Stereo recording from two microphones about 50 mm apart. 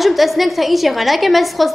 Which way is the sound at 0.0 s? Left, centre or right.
Centre.